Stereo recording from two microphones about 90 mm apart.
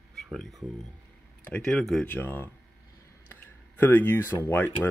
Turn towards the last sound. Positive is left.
turn(degrees=25)  # may be behind; listen again after turning